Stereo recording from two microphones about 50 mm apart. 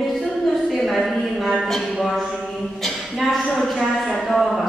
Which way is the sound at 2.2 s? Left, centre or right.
Centre.